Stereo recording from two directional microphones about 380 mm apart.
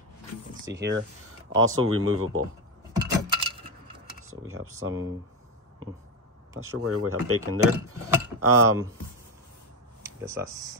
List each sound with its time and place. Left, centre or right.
0.7 s speech: right
2.9 s coin: centre
4.3 s speech: right
6.5 s speech: right
10.0 s speech: centre